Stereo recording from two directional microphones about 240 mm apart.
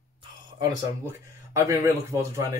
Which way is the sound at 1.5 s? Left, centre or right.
Centre.